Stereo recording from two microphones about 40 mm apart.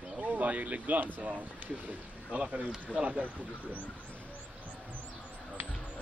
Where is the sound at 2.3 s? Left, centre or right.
Right.